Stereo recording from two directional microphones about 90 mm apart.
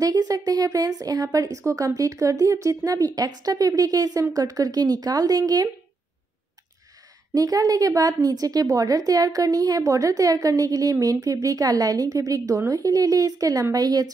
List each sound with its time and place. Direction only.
0.0 s a woman's voice: 45° right (ahead or behind)
7.3 s a woman's voice: 40° right (ahead or behind)